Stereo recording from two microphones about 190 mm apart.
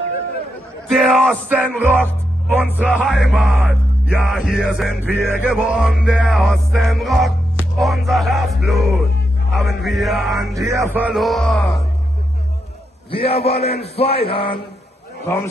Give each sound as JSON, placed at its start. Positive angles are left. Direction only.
{"t": 0.8, "sound": "speech", "side_deg": 0}
{"t": 1.5, "sound": "music", "side_deg": -10}
{"t": 10.6, "sound": "music", "side_deg": -15}
{"t": 13.1, "sound": "a sound", "side_deg": 30}